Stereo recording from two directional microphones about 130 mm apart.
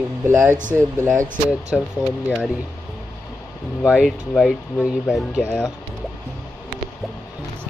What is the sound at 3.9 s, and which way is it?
Speech, centre (ahead or behind).